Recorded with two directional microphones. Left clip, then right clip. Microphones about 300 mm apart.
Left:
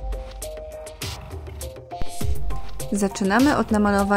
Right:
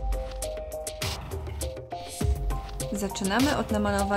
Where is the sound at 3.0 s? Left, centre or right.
Centre.